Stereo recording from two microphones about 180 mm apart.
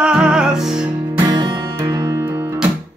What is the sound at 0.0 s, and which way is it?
Music, 5° right (ahead or behind).